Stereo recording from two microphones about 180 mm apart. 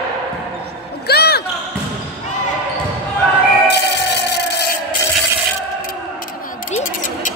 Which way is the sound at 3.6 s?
70° left (ahead or behind).